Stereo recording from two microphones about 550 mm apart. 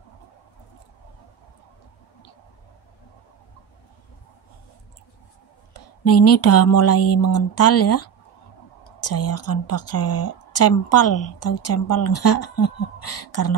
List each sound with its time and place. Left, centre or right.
5.7 s speech: left